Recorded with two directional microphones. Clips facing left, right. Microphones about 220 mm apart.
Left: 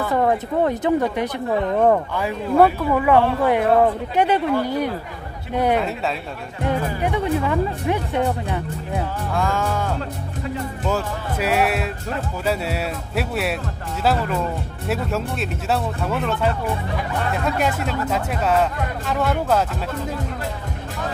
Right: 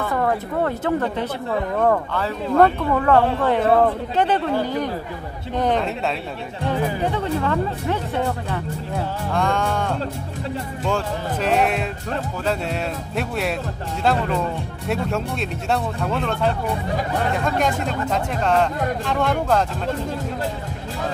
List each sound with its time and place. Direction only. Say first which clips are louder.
0.1 s speech: left 4 dB; 20° left (ahead or behind)
9.3 s speech: right 1 dB; 5° left (ahead or behind)
14.9 s speech: even; 5° left (ahead or behind)
17.8 s speech: even; 5° left (ahead or behind)